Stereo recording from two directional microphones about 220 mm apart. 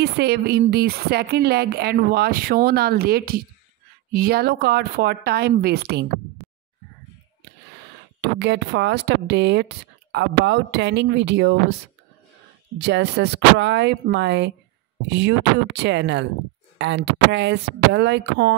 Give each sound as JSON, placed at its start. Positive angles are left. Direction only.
{"t": 0.0, "sound": "speech", "side_deg": -45}
{"t": 8.2, "sound": "speech", "side_deg": -50}
{"t": 12.7, "sound": "speech", "side_deg": -50}